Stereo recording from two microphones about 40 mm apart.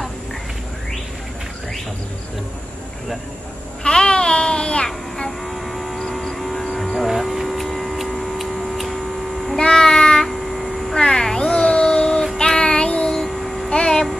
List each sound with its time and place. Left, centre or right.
3.8 s babbling: left
4.8 s child singing: centre
5.4 s a sound: centre
7.0 s hum: centre
9.7 s child singing: centre
10.2 s a sound: centre
11.0 s cat: centre
12.4 s child singing: left
13.3 s child singing: centre
13.7 s hum: centre